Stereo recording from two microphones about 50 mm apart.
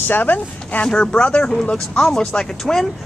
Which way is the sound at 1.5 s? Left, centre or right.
Centre.